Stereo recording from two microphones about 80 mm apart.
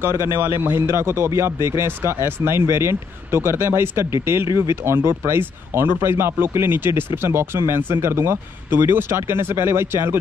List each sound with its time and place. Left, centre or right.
0.0 s speech: right